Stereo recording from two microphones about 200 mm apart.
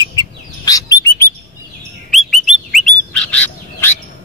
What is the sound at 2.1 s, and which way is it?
Bird, centre (ahead or behind).